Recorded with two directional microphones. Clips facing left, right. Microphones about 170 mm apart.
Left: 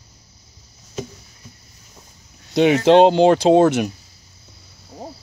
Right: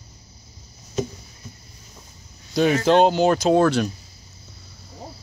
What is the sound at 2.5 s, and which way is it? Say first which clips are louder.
Speech: left 4 dB; 25° left (ahead or behind).